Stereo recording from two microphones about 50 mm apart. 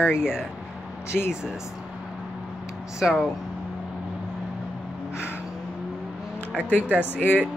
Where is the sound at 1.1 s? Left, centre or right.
Centre.